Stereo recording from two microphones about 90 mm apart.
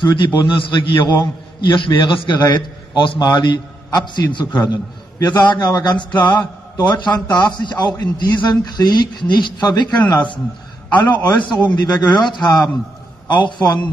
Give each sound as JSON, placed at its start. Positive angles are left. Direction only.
{"t": 0.0, "sound": "a man's voice", "side_deg": 60}